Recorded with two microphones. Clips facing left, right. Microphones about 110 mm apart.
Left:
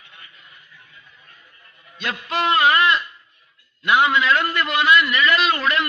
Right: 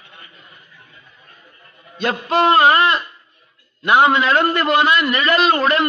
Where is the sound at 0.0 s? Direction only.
35° right (ahead or behind).